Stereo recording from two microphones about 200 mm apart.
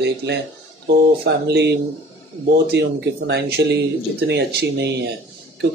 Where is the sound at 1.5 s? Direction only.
60° right (ahead or behind).